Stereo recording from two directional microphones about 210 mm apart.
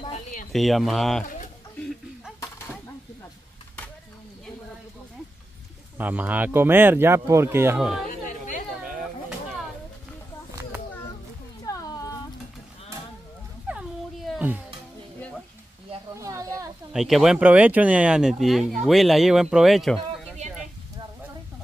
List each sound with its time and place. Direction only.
0.0 s a sound: 35° left (ahead or behind)
0.5 s speech: centre (ahead or behind)
5.9 s speech: 10° right (ahead or behind)
8.3 s chatter: 35° left (ahead or behind)
11.6 s a sound: 15° left (ahead or behind)
13.7 s cat: centre (ahead or behind)
15.1 s sizzle: 5° left (ahead or behind)
16.2 s a sound: 15° right (ahead or behind)
16.9 s speech: centre (ahead or behind)